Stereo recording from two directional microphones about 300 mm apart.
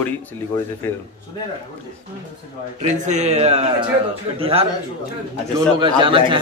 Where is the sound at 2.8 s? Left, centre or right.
Right.